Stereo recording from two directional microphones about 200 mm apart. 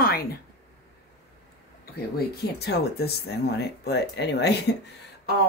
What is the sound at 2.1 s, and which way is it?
Speech, 50° left (ahead or behind).